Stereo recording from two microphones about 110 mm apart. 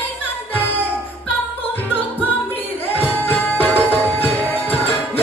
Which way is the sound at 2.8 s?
15° left (ahead or behind).